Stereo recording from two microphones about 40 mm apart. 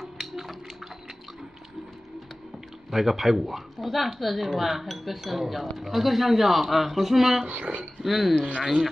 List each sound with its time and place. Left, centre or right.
0.0 s a sound: centre
2.9 s speech: centre
7.4 s speech: right
8.0 s speech: centre